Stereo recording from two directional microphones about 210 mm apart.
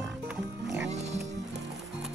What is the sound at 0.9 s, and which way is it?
Speech, 30° right (ahead or behind).